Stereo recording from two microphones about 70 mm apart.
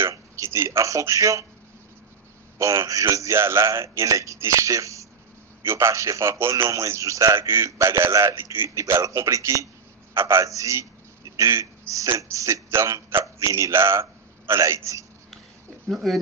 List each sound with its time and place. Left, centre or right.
0.0 s a man's voice: right
2.9 s a man's voice: right
10.1 s a man's voice: right
10.4 s a man's voice: right
14.6 s a man's voice: right
15.9 s speech: centre